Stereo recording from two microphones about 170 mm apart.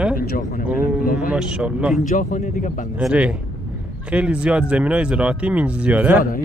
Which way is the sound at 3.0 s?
5° right (ahead or behind).